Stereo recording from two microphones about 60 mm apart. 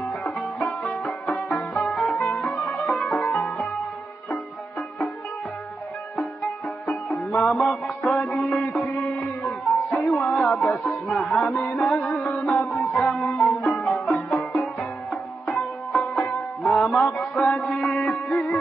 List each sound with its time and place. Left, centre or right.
0.0 s music: centre
6.9 s music: centre
11.5 s music: left
11.8 s music: centre